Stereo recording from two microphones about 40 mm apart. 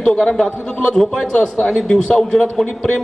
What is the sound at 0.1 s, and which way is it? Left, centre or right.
Speech, centre.